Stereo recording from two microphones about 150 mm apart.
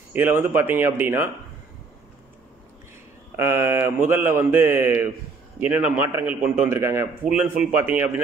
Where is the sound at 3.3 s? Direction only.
15° right (ahead or behind).